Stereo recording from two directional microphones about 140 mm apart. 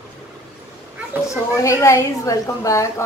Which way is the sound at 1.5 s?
20° left (ahead or behind).